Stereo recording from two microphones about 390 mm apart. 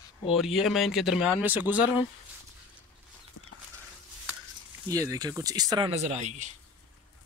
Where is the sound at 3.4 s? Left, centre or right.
Left.